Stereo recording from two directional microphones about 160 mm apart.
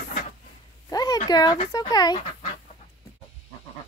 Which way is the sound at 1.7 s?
25° left (ahead or behind).